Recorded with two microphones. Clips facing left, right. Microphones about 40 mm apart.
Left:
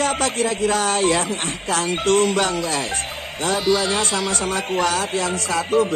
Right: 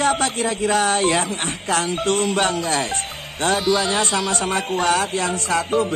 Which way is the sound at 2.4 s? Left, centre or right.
Right.